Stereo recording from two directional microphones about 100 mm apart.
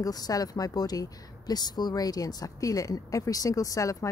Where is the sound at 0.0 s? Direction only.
40° left (ahead or behind).